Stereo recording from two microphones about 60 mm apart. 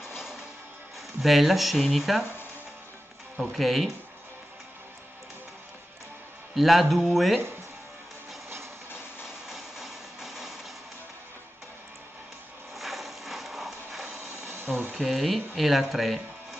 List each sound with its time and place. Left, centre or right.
1.2 s speech: centre
3.3 s speech: centre
6.5 s speech: centre
8.9 s a sound: left
9.5 s music: centre
12.7 s a sound: centre
15.0 s speech: centre